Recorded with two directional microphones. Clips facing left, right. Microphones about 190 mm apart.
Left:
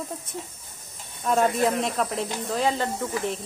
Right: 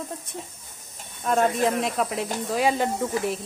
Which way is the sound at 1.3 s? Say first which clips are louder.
Even; centre (ahead or behind).